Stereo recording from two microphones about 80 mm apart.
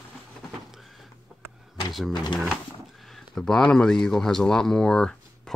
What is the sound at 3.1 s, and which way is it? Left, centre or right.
Speech, centre.